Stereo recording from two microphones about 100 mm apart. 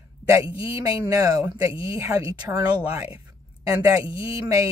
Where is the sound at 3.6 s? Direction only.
35° right (ahead or behind).